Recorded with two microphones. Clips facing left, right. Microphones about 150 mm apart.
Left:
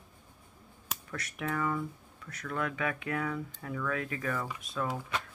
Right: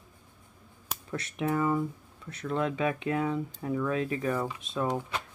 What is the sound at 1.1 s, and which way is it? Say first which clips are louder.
Speech: right 6 dB; 25° right (ahead or behind).